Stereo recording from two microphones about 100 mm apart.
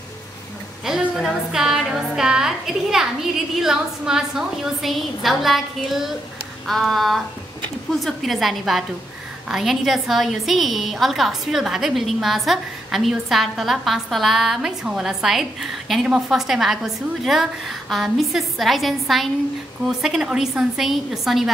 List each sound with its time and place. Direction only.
0.8 s a woman's voice: 5° right (ahead or behind)